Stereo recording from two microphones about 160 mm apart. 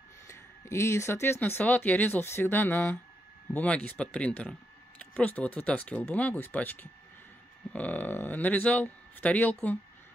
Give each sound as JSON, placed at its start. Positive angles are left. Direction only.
{"t": 0.3, "sound": "speech", "side_deg": 15}